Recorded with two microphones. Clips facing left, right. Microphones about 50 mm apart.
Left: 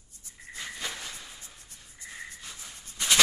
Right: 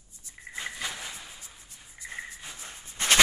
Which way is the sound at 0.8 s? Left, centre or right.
Centre.